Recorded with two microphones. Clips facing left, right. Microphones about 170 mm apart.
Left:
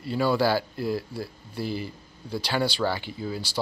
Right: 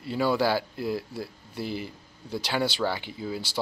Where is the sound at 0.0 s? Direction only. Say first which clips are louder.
Left 1 dB; 20° right (ahead or behind).